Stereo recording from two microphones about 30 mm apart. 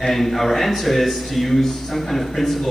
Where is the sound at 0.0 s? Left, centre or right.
Centre.